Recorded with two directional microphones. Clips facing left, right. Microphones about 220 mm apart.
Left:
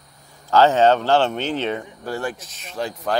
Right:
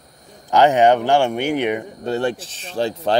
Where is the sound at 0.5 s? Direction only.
15° right (ahead or behind).